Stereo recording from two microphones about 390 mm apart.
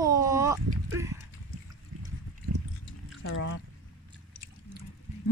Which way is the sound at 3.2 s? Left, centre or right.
Left.